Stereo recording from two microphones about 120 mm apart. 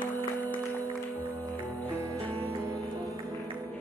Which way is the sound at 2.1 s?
10° left (ahead or behind).